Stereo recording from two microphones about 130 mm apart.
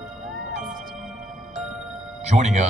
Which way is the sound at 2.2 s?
60° right (ahead or behind).